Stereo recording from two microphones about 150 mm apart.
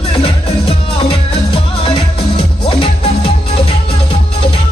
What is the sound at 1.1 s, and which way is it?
Music, 35° left (ahead or behind).